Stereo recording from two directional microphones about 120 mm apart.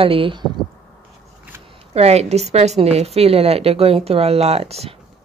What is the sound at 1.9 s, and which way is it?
A woman's voice, 60° right (ahead or behind).